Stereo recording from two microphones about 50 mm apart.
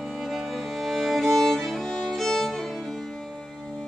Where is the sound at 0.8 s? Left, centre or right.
Centre.